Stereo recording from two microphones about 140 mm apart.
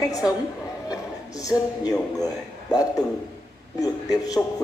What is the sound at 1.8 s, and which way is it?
Speech, 25° left (ahead or behind).